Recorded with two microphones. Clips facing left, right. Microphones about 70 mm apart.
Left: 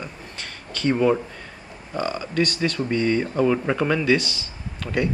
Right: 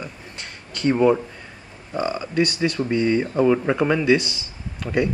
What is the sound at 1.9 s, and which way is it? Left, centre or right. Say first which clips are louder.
Speech: right 2 dB; right.